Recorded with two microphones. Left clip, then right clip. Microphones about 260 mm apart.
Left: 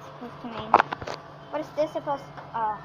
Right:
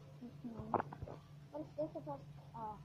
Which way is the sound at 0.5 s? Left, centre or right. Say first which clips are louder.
Left 19 dB; centre.